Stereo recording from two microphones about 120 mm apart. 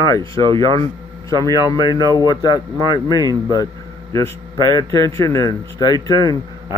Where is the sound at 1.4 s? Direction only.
30° left (ahead or behind).